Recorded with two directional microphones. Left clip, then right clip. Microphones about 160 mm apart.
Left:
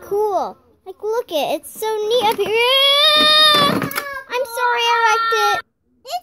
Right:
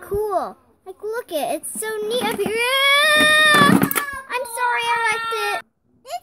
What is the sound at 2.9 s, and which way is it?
Baby cry, centre (ahead or behind).